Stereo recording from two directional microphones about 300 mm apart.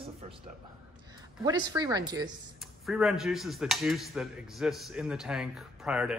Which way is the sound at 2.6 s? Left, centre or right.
Centre.